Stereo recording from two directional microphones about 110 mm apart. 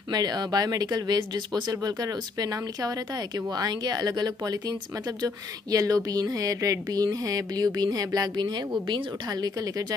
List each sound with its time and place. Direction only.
0.1 s speech: 40° right (ahead or behind)